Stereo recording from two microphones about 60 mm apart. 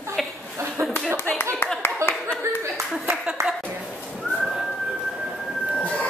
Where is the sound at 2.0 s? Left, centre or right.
Right.